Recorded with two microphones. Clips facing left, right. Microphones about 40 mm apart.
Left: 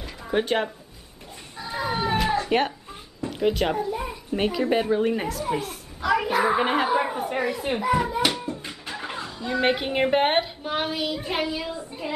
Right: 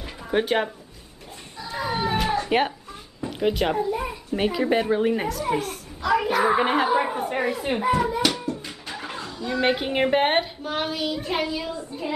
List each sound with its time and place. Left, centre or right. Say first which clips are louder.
0.0 s a sound: right 1 dB; centre
1.8 s a sound: even; centre
3.3 s a child's voice: even; centre
6.0 s children playing: right 1 dB; centre
7.5 s speech: right 1 dB; centre
7.9 s hands: even; centre
9.0 s speech: even; centre
10.6 s a child's voice: even; centre